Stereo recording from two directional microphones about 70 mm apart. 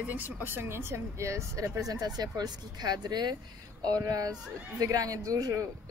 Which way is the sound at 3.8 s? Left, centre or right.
Right.